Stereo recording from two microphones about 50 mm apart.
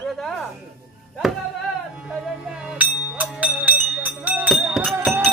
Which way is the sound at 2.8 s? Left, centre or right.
Right.